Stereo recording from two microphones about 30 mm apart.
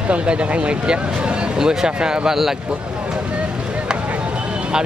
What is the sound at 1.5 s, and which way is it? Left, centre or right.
Speech, right.